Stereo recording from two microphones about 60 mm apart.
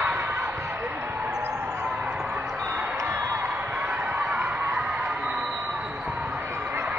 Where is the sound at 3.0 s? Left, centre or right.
Right.